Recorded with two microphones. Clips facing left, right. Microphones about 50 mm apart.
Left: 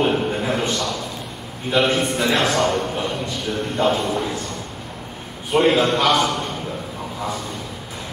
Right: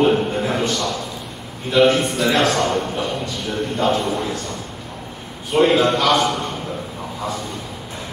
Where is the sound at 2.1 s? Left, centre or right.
Centre.